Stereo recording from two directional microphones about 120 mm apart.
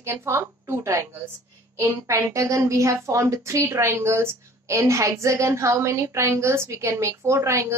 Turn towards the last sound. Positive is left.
turn(degrees=-25)  # may be behind; listen again after turning